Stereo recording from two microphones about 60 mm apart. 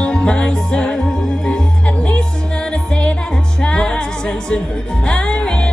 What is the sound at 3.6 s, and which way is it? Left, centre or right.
Music, centre.